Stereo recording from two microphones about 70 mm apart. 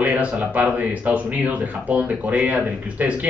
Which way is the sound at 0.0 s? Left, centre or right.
Centre.